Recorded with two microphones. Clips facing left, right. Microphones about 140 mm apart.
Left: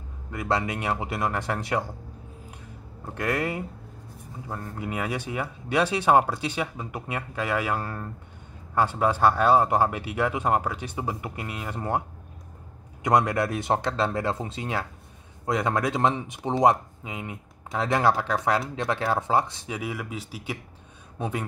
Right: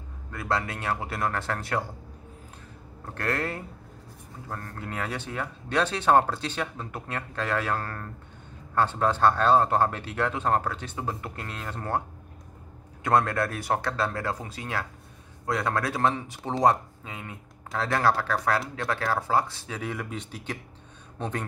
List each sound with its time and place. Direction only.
0.3 s speech: 15° left (ahead or behind)
3.1 s speech: 15° left (ahead or behind)
13.0 s speech: 15° left (ahead or behind)